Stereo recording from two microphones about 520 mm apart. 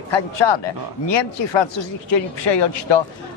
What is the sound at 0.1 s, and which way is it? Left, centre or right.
Speech, left.